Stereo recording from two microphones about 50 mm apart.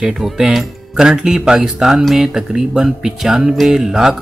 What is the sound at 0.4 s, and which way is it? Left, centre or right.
A man's voice, centre.